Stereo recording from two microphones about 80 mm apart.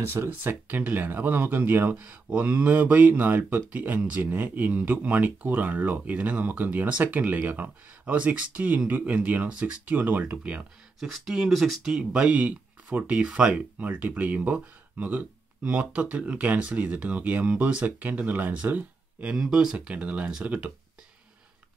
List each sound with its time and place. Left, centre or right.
0.0 s speech: right
11.0 s speech: centre
19.3 s speech: centre